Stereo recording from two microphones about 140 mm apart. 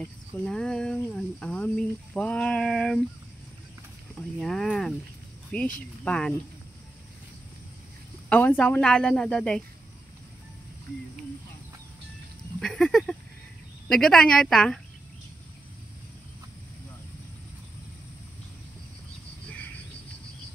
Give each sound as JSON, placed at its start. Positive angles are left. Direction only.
{"t": 0.0, "sound": "speech", "side_deg": 5}
{"t": 4.2, "sound": "a woman's voice", "side_deg": 5}
{"t": 8.3, "sound": "a woman's voice", "side_deg": 10}
{"t": 12.5, "sound": "speech", "side_deg": 5}